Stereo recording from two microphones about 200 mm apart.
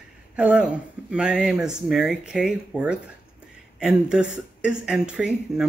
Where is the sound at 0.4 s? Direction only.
5° right (ahead or behind).